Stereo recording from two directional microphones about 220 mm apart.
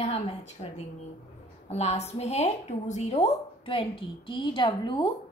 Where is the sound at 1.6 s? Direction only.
30° left (ahead or behind).